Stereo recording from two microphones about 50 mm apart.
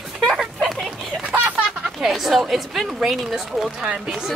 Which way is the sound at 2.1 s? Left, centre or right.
Centre.